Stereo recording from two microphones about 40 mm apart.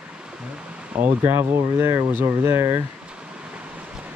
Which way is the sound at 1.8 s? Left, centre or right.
Right.